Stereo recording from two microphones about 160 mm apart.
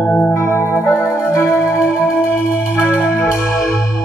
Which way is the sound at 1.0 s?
15° left (ahead or behind).